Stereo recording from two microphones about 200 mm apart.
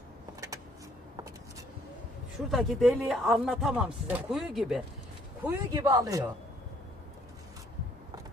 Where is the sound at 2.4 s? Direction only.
Centre (ahead or behind).